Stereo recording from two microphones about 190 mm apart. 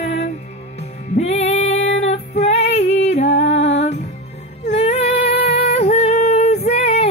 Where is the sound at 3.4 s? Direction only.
35° left (ahead or behind).